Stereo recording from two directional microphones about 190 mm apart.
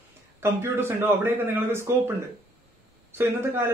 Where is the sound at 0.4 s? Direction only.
10° right (ahead or behind).